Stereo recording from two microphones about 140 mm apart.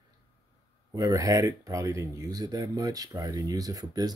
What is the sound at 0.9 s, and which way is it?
Speech, 25° right (ahead or behind).